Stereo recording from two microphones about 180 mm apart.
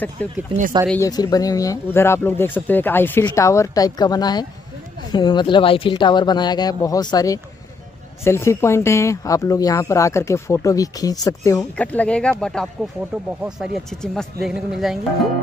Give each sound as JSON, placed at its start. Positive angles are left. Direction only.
{"t": 0.2, "sound": "speech", "side_deg": 10}
{"t": 11.7, "sound": "speech", "side_deg": 10}